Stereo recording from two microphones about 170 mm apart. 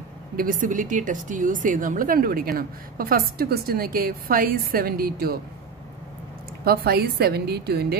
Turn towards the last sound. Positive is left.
turn(degrees=-70)  # may be behind; listen again after turning